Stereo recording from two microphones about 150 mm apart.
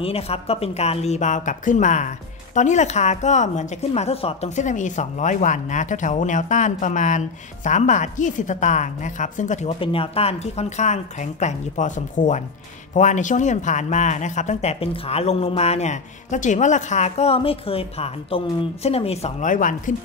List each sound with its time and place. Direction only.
0.0 s speech: 40° left (ahead or behind)
19.4 s speech: 60° left (ahead or behind)